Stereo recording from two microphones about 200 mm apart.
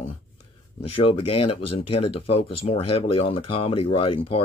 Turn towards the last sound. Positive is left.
turn(degrees=25)  # may be behind; listen again after turning